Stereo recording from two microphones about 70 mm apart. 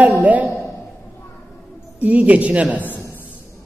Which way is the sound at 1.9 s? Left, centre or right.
Centre.